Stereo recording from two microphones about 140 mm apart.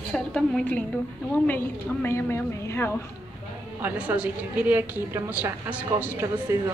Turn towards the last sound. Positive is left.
turn(degrees=-20)  # may be behind; listen again after turning